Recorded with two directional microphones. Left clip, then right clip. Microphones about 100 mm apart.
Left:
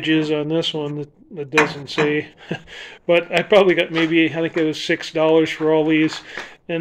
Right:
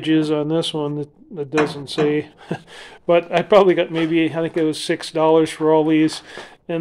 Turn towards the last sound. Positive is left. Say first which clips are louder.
# left 1 dB
turn(degrees=-20)  # may be behind; listen again after turning